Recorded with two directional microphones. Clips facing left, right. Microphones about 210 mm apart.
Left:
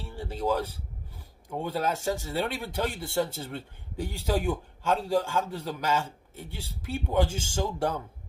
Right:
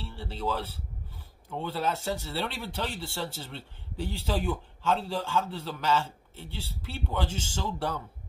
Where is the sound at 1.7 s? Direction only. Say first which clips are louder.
Left 2 dB; 45° left (ahead or behind).